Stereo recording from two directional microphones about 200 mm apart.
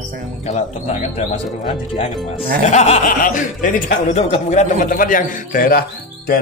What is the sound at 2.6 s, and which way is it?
Speech, 35° left (ahead or behind).